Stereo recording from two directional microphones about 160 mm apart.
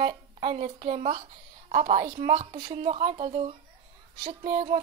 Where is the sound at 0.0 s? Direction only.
40° right (ahead or behind).